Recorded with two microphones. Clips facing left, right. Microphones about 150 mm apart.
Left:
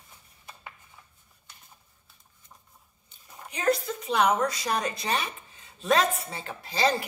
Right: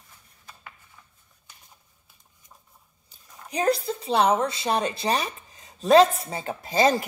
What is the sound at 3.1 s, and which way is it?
Speech, 35° right (ahead or behind).